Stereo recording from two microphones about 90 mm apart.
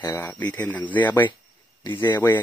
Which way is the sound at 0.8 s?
60° left (ahead or behind).